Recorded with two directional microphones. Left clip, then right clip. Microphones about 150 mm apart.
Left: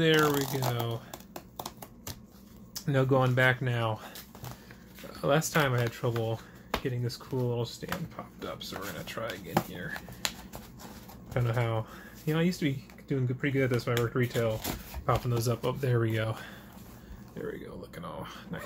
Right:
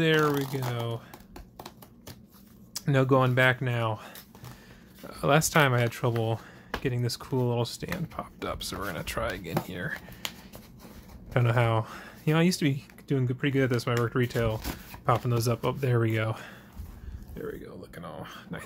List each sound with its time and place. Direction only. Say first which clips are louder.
0.0 s speech: even; 30° right (ahead or behind)
2.7 s speech: right 3 dB; 45° right (ahead or behind)
3.6 s speech: right 2 dB; 30° right (ahead or behind)
5.1 s speech: right 4 dB; 40° right (ahead or behind); by 9.9 s 60° right (ahead or behind)
11.3 s speech: right 5 dB; 55° right (ahead or behind); by 18.6 s 25° right (ahead or behind)